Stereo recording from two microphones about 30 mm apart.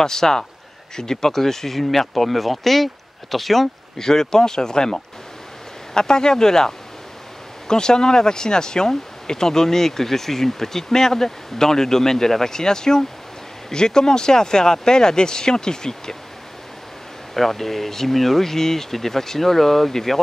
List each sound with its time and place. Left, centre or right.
0.0 s speech: centre
4.0 s speech: centre
17.3 s speech: centre